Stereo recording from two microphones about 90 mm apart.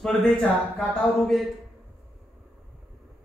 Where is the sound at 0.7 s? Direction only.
10° left (ahead or behind).